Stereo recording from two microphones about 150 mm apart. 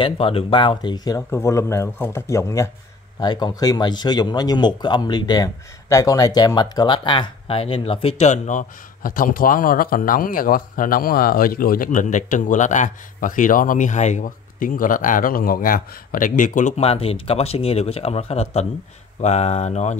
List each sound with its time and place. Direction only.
0.0 s speech: 40° left (ahead or behind)